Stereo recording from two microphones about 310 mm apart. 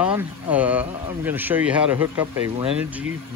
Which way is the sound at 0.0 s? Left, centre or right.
Centre.